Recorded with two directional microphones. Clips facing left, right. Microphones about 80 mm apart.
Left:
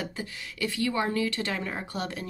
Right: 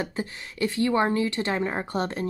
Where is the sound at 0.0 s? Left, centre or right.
Right.